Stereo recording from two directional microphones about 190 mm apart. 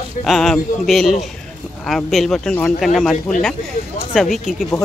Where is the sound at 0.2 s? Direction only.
Centre (ahead or behind).